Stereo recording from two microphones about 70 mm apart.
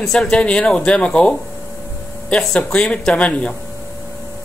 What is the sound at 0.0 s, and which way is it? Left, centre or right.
Speech, centre.